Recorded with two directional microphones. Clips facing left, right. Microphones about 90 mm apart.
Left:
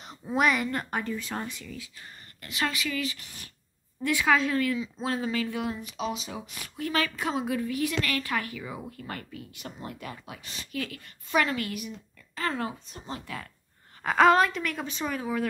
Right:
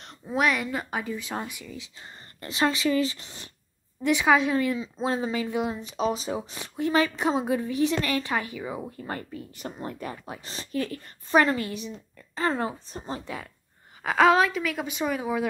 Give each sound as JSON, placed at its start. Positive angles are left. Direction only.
{"t": 0.0, "sound": "speech", "side_deg": 0}
{"t": 2.0, "sound": "speech", "side_deg": -30}
{"t": 14.0, "sound": "a woman's voice", "side_deg": 0}